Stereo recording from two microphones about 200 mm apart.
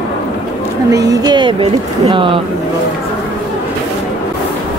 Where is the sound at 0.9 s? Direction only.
20° right (ahead or behind).